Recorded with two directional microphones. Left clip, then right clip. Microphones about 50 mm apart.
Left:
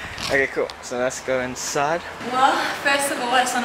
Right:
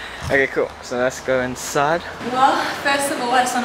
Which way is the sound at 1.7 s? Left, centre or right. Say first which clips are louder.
Right 3 dB; right.